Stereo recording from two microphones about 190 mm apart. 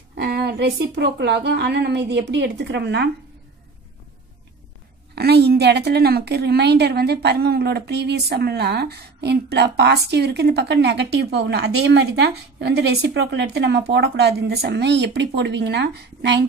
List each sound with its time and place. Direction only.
0.2 s a woman's voice: 55° right (ahead or behind)
5.1 s a woman's voice: 60° right (ahead or behind)